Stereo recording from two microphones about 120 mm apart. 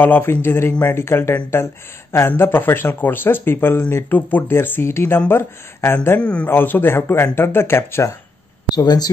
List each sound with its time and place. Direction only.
0.0 s speech: 15° left (ahead or behind)
8.7 s speech: 35° left (ahead or behind)